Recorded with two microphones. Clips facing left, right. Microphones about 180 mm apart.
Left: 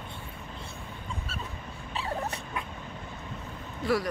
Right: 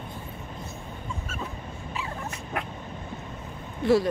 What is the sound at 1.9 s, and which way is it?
Dog, 35° left (ahead or behind).